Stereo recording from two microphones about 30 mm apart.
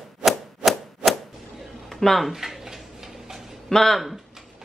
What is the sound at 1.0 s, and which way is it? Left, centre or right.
Whip, right.